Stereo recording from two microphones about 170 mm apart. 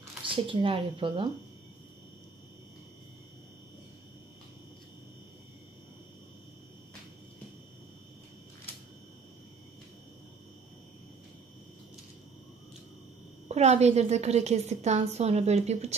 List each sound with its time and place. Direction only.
0.2 s a woman's voice: 30° right (ahead or behind)
13.5 s a woman's voice: 40° right (ahead or behind)